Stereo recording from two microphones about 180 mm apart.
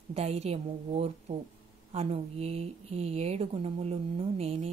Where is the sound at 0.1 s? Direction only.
35° right (ahead or behind).